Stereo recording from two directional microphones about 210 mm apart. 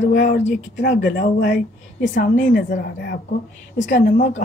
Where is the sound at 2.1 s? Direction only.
40° left (ahead or behind).